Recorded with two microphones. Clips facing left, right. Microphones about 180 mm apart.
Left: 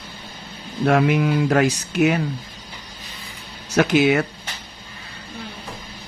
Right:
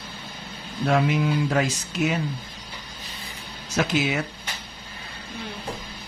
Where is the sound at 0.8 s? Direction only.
65° left (ahead or behind).